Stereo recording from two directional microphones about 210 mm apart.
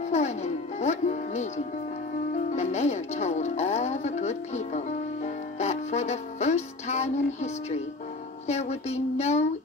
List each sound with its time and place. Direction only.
0.1 s speech: 30° left (ahead or behind)
2.5 s music: 30° left (ahead or behind)
8.5 s a sound: 30° left (ahead or behind)